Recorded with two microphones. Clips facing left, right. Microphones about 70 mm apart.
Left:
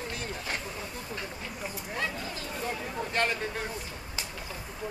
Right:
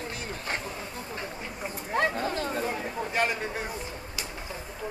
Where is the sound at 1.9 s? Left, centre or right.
Right.